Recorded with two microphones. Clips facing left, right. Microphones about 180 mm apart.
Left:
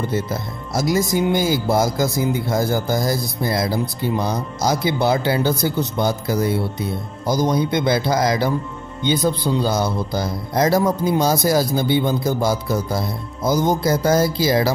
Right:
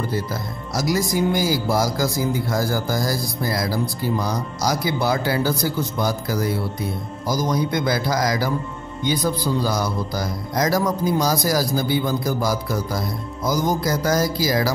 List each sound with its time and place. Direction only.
0.0 s speech: 25° left (ahead or behind)